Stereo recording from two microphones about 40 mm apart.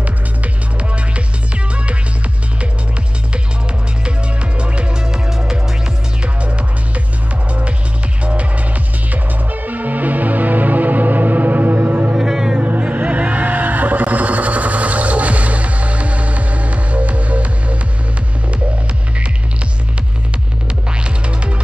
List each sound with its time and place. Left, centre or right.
0.7 s music: right
4.6 s music: right
8.2 s music: right
9.1 s music: right
12.2 s music: centre
12.6 s music: right
13.0 s a sound: right